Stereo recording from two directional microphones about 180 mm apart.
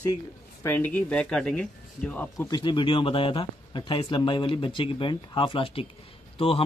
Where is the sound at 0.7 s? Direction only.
10° left (ahead or behind).